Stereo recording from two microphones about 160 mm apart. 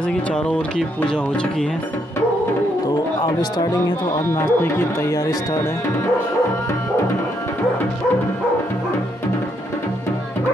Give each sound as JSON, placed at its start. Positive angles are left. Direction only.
{"t": 0.1, "sound": "speech", "side_deg": 5}
{"t": 3.3, "sound": "speech", "side_deg": 25}
{"t": 4.3, "sound": "speech", "side_deg": 15}